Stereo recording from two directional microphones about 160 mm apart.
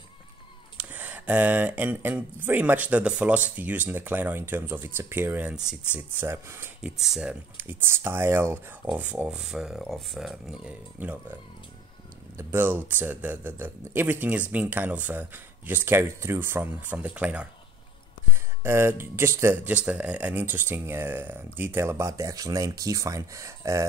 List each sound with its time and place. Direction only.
0.7 s speech: 10° right (ahead or behind)
12.4 s speech: 15° right (ahead or behind)
18.6 s speech: 15° right (ahead or behind)